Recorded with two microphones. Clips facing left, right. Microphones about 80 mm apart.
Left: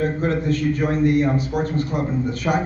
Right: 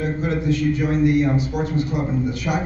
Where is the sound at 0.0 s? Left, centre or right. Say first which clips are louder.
Left 2 dB; left.